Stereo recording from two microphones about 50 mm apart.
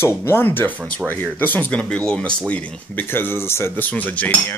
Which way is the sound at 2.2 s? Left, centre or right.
Left.